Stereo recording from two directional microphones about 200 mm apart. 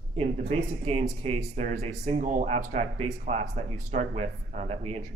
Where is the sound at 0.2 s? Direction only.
30° right (ahead or behind).